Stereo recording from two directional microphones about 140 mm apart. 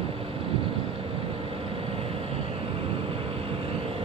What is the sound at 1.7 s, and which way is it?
Vehicle, 45° right (ahead or behind).